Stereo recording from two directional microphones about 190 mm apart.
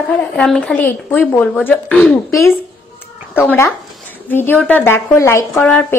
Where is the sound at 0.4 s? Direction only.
Centre (ahead or behind).